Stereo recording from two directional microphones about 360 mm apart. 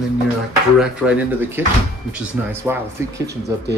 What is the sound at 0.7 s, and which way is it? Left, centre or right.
Speech, centre.